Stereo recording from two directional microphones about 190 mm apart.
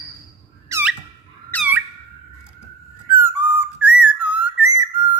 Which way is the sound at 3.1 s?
15° right (ahead or behind).